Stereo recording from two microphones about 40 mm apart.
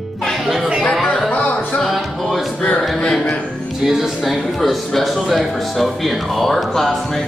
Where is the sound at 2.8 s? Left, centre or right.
Centre.